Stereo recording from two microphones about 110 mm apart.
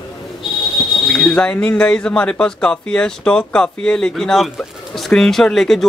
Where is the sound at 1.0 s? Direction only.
5° left (ahead or behind).